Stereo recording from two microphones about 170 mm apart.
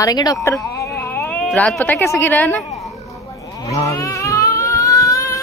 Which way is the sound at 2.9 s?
20° left (ahead or behind).